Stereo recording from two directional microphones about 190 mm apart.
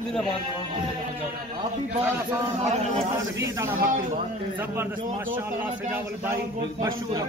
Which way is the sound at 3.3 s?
15° right (ahead or behind).